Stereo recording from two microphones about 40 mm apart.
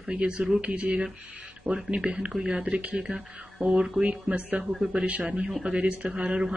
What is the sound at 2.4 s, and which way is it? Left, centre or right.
Speech, right.